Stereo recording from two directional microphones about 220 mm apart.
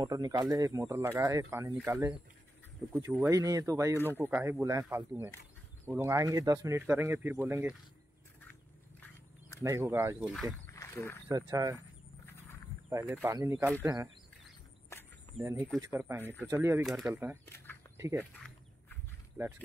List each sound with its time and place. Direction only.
0.0 s speech: 15° right (ahead or behind)
9.6 s speech: 10° right (ahead or behind)
10.7 s wild animals: 10° left (ahead or behind)
11.2 s speech: 15° right (ahead or behind)
12.9 s speech: 10° right (ahead or behind)
14.9 s a sound: 10° left (ahead or behind)
15.8 s speech: 10° right (ahead or behind)